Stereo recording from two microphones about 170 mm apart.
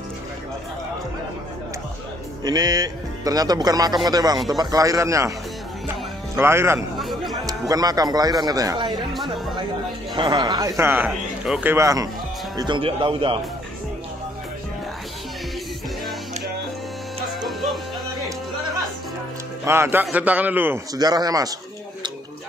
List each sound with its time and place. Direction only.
2.4 s a man's voice: 25° right (ahead or behind)
6.3 s a man's voice: 15° right (ahead or behind)
7.0 s music: centre (ahead or behind)
7.4 s a man's voice: 20° right (ahead or behind)
10.1 s a man's voice: 25° right (ahead or behind)
11.1 s speech: 5° right (ahead or behind)
11.7 s a man's voice: 20° right (ahead or behind)
17.4 s music: centre (ahead or behind)
19.6 s a man's voice: 15° right (ahead or behind)